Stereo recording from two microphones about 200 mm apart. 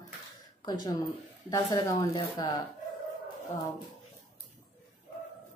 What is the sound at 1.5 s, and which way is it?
A woman's voice, 20° left (ahead or behind).